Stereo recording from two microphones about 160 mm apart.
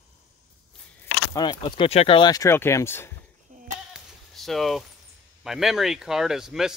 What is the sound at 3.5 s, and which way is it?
Sheep, 50° right (ahead or behind).